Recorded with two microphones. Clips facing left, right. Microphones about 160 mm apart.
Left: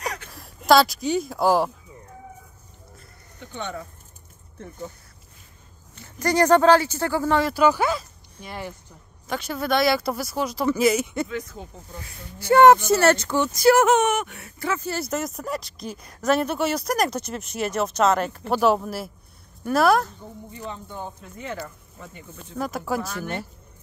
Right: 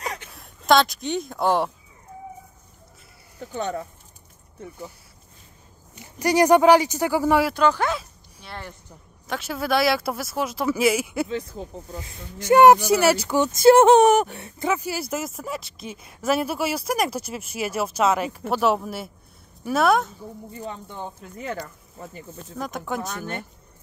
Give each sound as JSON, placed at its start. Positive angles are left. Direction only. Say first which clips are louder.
{"t": 0.0, "sound": "a sound", "louder": "left 1 dB", "side_deg": -25}
{"t": 0.3, "sound": "speech", "louder": "left 1 dB", "side_deg": 0}
{"t": 3.3, "sound": "speech", "louder": "right 5 dB", "side_deg": -35}
{"t": 5.9, "sound": "speech", "louder": "right 1 dB", "side_deg": -15}
{"t": 7.5, "sound": "speech", "louder": "left 1 dB", "side_deg": 5}
{"t": 9.3, "sound": "speech", "louder": "even", "side_deg": 0}
{"t": 11.2, "sound": "speech", "louder": "right 2 dB", "side_deg": -30}
{"t": 14.6, "sound": "speech", "louder": "right 2 dB", "side_deg": -15}
{"t": 22.6, "sound": "speech", "louder": "left 3 dB", "side_deg": 5}